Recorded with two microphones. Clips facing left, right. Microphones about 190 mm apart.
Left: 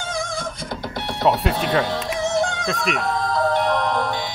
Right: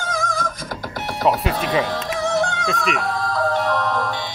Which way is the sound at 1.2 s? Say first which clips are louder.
Even; centre (ahead or behind).